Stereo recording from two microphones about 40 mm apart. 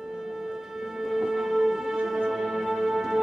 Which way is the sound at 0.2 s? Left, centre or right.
Centre.